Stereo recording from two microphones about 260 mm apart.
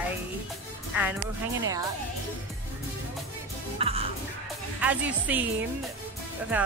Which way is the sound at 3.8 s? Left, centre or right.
Right.